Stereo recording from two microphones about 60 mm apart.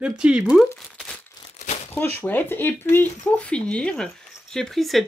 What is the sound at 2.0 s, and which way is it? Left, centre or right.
Speech, left.